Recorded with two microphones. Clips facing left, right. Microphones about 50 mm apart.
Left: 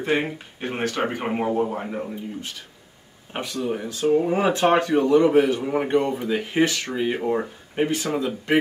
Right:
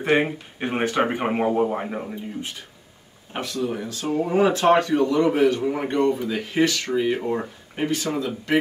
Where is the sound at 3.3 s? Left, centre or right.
Left.